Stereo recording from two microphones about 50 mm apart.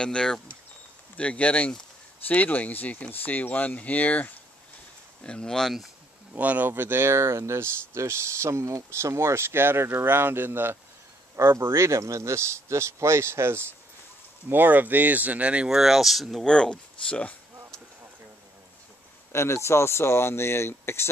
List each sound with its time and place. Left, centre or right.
0.0 s speech: centre; by 4.3 s left
5.2 s speech: centre
6.3 s speech: right
6.7 s speech: right
11.6 s speech: right
14.5 s speech: right
15.7 s speech: centre
16.4 s speech: centre
19.3 s speech: left